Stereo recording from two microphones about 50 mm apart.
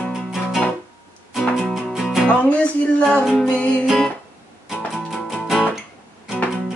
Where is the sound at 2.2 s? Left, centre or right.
Left.